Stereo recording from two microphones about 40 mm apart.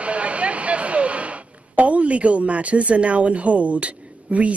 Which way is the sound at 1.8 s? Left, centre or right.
Right.